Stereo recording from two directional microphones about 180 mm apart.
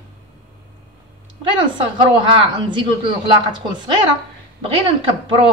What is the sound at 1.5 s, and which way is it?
Speech, 25° right (ahead or behind).